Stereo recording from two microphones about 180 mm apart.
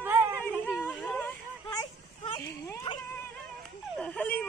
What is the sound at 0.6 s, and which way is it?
Speech, 10° left (ahead or behind).